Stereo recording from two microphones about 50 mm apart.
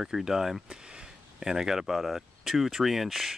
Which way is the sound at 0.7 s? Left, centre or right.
Centre.